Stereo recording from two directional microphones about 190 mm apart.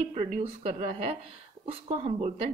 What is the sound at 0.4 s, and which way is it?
Speech, 30° right (ahead or behind).